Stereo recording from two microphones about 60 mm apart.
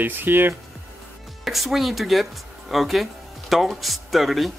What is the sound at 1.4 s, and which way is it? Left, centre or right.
Speech, centre.